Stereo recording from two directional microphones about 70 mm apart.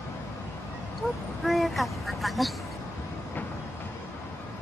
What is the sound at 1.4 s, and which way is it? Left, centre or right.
Vehicle, centre.